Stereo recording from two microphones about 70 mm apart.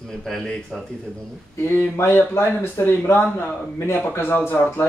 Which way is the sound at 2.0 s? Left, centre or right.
Left.